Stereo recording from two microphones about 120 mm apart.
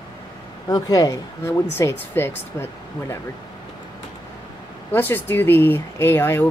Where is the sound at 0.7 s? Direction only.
30° left (ahead or behind).